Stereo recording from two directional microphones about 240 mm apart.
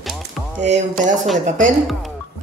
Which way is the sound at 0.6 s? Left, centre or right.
Right.